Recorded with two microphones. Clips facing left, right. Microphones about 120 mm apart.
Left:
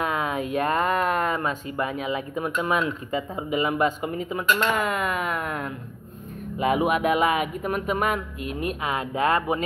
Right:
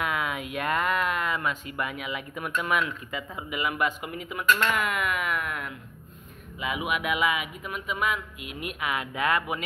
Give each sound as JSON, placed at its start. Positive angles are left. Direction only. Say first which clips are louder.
{"t": 0.0, "sound": "speech", "louder": "left 4 dB", "side_deg": 35}
{"t": 6.6, "sound": "speech", "louder": "left 8 dB", "side_deg": 45}